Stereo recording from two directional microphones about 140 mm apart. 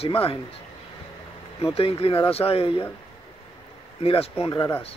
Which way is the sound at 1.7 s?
45° left (ahead or behind).